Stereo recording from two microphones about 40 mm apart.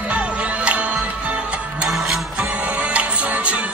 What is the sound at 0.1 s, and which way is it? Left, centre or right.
Music, right.